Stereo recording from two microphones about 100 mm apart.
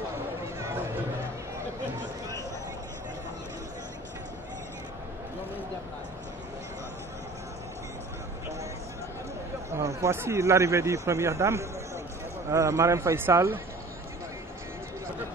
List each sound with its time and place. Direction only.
9.8 s speech: 30° right (ahead or behind)